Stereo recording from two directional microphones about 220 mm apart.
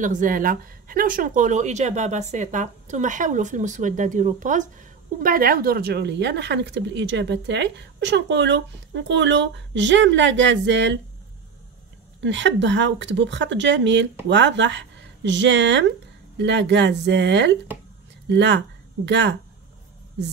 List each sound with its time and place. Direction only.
0.0 s speech: 35° right (ahead or behind); by 11.0 s 55° right (ahead or behind)
12.2 s a woman's voice: 55° right (ahead or behind)